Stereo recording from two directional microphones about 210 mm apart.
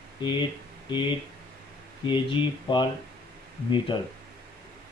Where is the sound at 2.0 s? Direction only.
20° left (ahead or behind).